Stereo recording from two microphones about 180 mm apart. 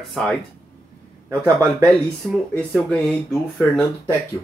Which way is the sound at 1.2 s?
20° right (ahead or behind).